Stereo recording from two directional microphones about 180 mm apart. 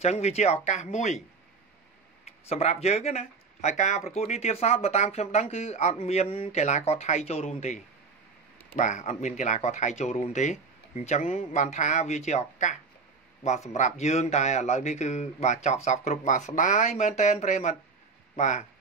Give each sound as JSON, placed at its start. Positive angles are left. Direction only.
{"t": 0.0, "sound": "speech", "side_deg": 35}
{"t": 2.2, "sound": "speech", "side_deg": 35}
{"t": 13.7, "sound": "speech", "side_deg": 40}